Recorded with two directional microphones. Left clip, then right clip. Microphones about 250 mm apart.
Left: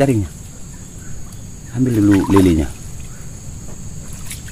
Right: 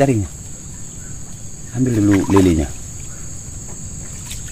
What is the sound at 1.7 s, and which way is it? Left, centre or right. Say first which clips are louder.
Speech: left 2 dB; centre.